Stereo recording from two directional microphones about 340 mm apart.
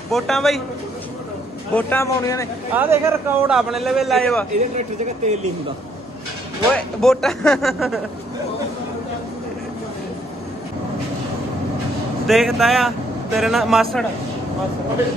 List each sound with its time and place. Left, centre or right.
0.1 s a man's voice: centre
1.8 s speech: centre
2.7 s a man's voice: centre
4.7 s speech: centre
6.7 s a man's voice: centre
12.3 s a man's voice: centre